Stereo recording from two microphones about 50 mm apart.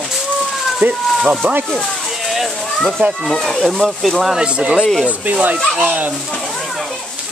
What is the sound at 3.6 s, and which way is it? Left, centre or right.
Speech, centre.